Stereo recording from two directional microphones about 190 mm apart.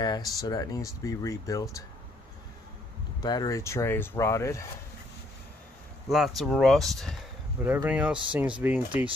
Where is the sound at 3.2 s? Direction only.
20° left (ahead or behind).